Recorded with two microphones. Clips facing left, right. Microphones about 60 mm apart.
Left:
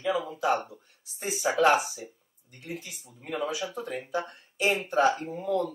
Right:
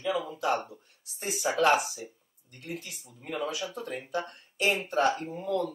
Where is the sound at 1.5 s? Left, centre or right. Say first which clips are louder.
Left 2 dB; centre.